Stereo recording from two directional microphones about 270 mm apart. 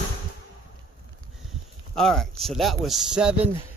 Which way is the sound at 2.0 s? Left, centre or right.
Centre.